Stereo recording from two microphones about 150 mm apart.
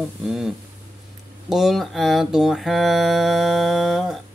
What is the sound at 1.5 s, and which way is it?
Mantra, centre (ahead or behind).